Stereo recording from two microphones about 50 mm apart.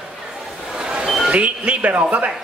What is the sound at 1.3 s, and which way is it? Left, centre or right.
Speech, right.